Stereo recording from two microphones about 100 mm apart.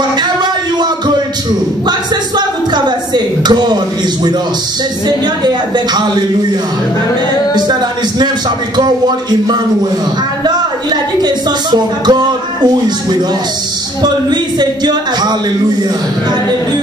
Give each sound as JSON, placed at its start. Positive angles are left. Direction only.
{"t": 1.9, "sound": "a sound", "side_deg": -45}
{"t": 3.4, "sound": "speech", "side_deg": -45}
{"t": 11.2, "sound": "speech", "side_deg": -45}